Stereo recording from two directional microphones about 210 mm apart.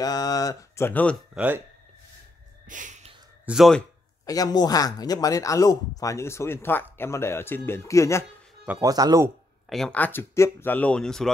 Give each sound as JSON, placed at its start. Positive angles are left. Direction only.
{"t": 0.0, "sound": "speech", "side_deg": 15}
{"t": 1.3, "sound": "speech", "side_deg": -5}
{"t": 2.6, "sound": "a sound", "side_deg": -35}
{"t": 3.4, "sound": "speech", "side_deg": 0}
{"t": 4.3, "sound": "speech", "side_deg": 20}
{"t": 8.7, "sound": "speech", "side_deg": -15}
{"t": 9.7, "sound": "speech", "side_deg": 5}